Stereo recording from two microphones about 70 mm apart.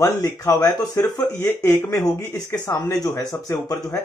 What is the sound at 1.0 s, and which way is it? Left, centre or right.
Speech, left.